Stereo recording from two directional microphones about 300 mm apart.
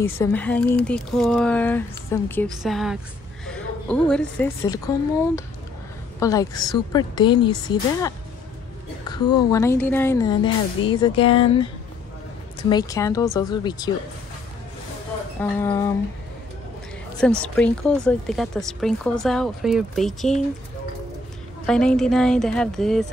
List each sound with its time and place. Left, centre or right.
0.0 s a woman's voice: centre
9.1 s a woman's voice: centre
15.6 s a woman's voice: centre
17.2 s speech: centre
21.6 s speech: centre